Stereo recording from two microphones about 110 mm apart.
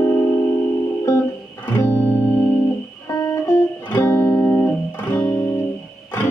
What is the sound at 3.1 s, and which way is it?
Music, 35° left (ahead or behind).